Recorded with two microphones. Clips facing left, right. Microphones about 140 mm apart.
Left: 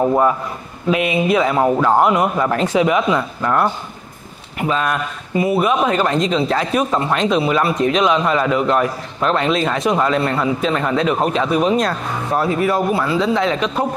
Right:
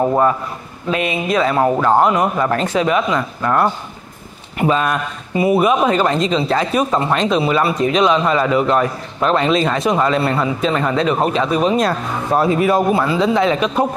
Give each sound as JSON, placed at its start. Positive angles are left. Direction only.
{"t": 0.0, "sound": "speech", "side_deg": -5}
{"t": 0.9, "sound": "speech", "side_deg": 10}
{"t": 2.5, "sound": "speech", "side_deg": 10}
{"t": 5.4, "sound": "speech", "side_deg": -10}
{"t": 12.4, "sound": "speech", "side_deg": -20}